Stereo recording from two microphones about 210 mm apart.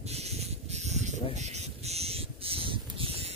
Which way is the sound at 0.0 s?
30° right (ahead or behind).